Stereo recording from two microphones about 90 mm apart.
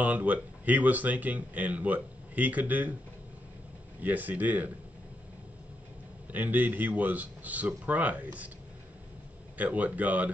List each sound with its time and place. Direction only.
0.0 s speech: 15° right (ahead or behind)
4.0 s speech: 20° right (ahead or behind)
6.3 s speech: 20° right (ahead or behind)
9.6 s speech: 15° right (ahead or behind)